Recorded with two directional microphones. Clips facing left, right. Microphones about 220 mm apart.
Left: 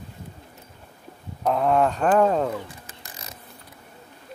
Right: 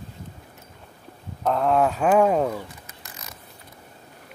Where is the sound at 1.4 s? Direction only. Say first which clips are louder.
Even; 5° left (ahead or behind).